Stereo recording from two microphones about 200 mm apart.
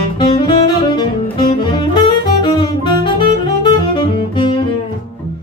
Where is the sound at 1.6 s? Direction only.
25° left (ahead or behind).